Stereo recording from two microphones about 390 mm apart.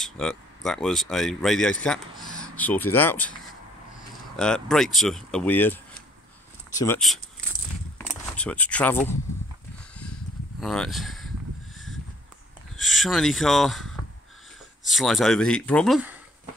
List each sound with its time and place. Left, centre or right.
0.0 s speech: centre
4.4 s speech: centre
8.1 s a sound: centre
10.6 s speech: centre
12.8 s speech: centre